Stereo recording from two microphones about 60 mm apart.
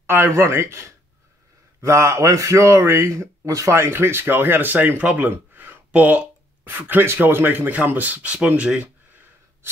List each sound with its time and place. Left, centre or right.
0.0 s a man's voice: right
3.1 s speech: right
3.7 s speech: right
5.3 s a sound: right
7.2 s speech: right